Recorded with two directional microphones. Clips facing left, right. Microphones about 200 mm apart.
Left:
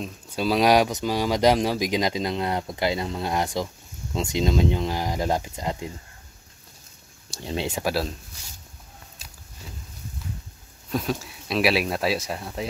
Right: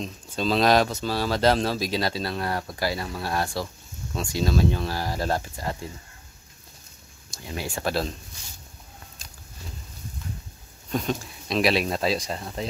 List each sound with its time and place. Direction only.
0.0 s a man's voice: 10° left (ahead or behind)
7.3 s speech: 25° left (ahead or behind)
7.8 s speech: 5° left (ahead or behind)
10.9 s speech: 5° left (ahead or behind)